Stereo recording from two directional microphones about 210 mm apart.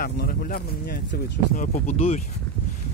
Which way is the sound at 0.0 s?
45° left (ahead or behind).